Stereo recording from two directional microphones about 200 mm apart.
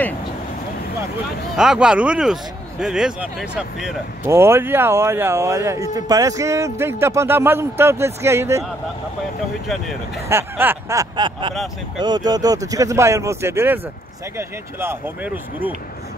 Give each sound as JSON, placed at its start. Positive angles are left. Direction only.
{"t": 1.6, "sound": "speech", "side_deg": -5}
{"t": 9.7, "sound": "speech", "side_deg": 0}
{"t": 10.2, "sound": "speech", "side_deg": -10}